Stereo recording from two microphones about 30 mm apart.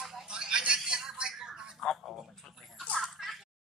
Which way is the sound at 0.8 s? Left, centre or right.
Right.